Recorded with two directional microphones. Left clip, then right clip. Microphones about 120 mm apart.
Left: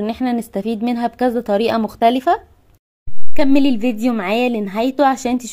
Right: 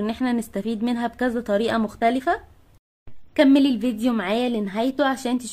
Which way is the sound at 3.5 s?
25° left (ahead or behind).